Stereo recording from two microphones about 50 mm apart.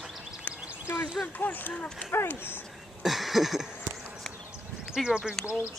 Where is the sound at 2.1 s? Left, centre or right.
Left.